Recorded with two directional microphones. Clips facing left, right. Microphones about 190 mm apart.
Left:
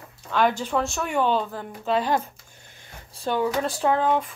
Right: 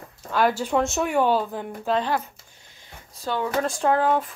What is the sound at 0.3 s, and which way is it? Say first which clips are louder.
Speech: right 1 dB; 5° right (ahead or behind).